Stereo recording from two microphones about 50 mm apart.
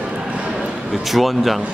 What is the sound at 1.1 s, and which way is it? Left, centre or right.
Speech, centre.